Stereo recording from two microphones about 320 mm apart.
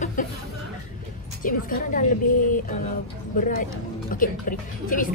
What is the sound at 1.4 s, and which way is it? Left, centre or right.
Speech, left.